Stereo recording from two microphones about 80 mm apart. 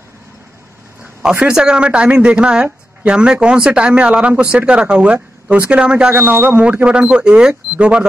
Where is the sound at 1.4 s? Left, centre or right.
Centre.